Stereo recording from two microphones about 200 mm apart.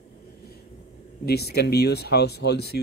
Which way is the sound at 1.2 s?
50° left (ahead or behind).